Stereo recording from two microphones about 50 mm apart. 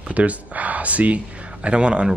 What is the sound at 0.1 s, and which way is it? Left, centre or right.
Speech, right.